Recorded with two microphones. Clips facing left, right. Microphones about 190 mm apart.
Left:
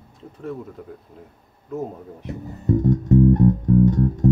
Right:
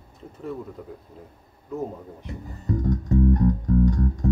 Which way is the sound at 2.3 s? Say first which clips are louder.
Left 7 dB; 20° left (ahead or behind).